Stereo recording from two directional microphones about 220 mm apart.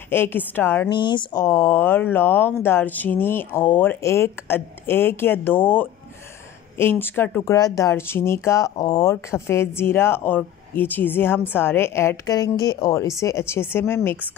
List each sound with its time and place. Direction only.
0.1 s speech: 10° left (ahead or behind)
0.9 s speech: 20° left (ahead or behind)